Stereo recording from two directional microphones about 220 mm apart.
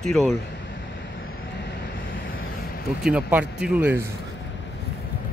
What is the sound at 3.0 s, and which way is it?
Speech, 5° right (ahead or behind).